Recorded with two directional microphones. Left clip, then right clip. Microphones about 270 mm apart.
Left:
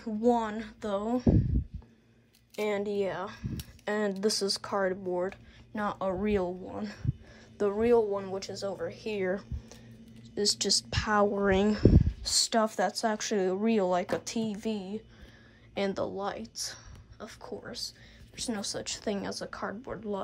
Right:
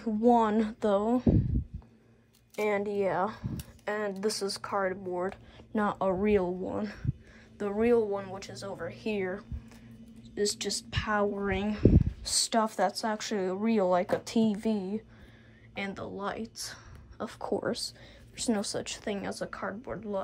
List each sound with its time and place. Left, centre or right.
0.0 s speech: centre
2.5 s speech: centre
9.3 s a sound: centre
10.3 s a woman's voice: centre